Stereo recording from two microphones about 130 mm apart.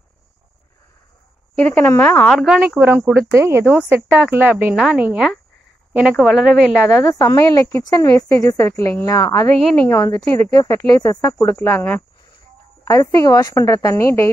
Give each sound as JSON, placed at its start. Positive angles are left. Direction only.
{"t": 1.6, "sound": "speech", "side_deg": 10}
{"t": 2.2, "sound": "speech", "side_deg": 0}
{"t": 2.6, "sound": "speech", "side_deg": -15}
{"t": 6.9, "sound": "speech", "side_deg": 20}